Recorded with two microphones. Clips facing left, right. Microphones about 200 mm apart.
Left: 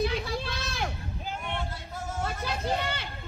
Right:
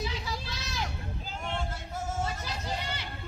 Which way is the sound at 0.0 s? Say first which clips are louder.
Left 7 dB; 60° left (ahead or behind).